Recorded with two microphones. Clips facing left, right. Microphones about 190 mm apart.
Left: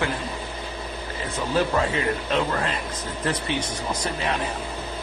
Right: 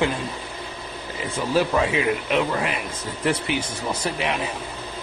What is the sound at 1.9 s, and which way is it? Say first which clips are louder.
Speech: right 2 dB; 10° right (ahead or behind).